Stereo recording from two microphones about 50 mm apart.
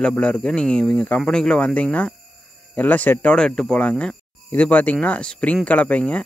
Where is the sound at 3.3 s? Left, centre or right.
Centre.